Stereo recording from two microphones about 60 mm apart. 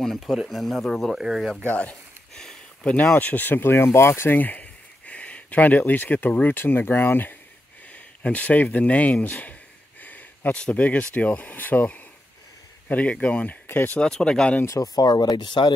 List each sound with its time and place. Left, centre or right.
0.0 s speech: centre
1.7 s speech: left
2.3 s a sound: centre
3.2 s speech: left
4.4 s speech: left
7.9 s a sound: left
10.5 s speech: left
13.7 s speech: left
13.9 s speech: centre
14.7 s speech: left